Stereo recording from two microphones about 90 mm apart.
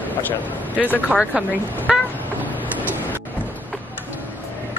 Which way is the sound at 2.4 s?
20° right (ahead or behind).